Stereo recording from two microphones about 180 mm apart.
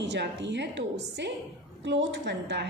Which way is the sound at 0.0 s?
75° right (ahead or behind).